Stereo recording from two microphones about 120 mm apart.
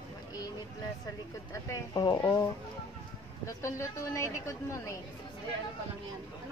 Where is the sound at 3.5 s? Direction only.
25° left (ahead or behind).